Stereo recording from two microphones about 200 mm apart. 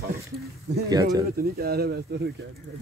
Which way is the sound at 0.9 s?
20° right (ahead or behind).